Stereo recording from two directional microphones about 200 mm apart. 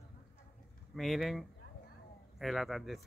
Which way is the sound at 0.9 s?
Centre (ahead or behind).